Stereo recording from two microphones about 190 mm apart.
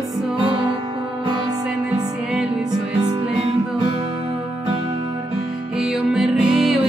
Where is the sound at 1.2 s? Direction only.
20° right (ahead or behind).